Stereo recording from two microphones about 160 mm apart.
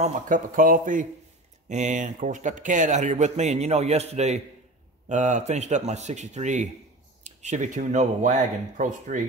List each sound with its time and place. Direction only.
0.0 s speech: 55° right (ahead or behind)